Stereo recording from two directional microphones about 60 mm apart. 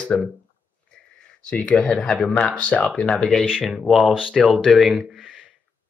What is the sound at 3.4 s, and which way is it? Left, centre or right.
Speech, centre.